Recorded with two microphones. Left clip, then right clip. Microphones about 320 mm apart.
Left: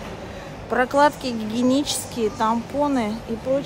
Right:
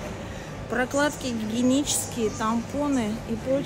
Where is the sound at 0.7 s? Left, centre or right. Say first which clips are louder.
Left 7 dB; centre.